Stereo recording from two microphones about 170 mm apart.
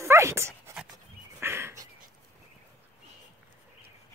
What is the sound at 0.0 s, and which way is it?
Dog, 15° right (ahead or behind).